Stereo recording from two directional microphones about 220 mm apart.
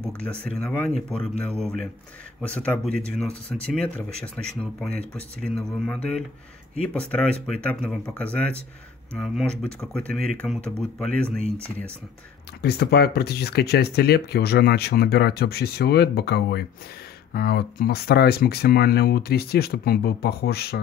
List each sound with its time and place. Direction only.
0.2 s speech: 5° left (ahead or behind)
12.6 s speech: 45° left (ahead or behind)